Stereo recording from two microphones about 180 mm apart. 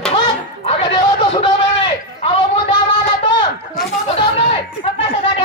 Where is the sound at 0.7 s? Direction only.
25° left (ahead or behind).